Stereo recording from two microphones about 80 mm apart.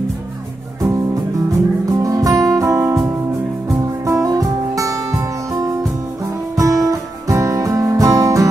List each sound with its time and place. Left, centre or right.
1.9 s music: right
4.0 s music: right